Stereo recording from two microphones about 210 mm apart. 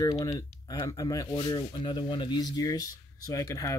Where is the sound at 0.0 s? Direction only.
15° left (ahead or behind).